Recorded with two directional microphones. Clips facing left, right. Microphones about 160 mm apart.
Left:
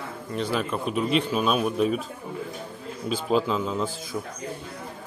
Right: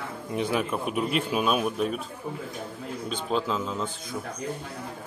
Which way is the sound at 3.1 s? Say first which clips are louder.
Left 5 dB; 5° left (ahead or behind).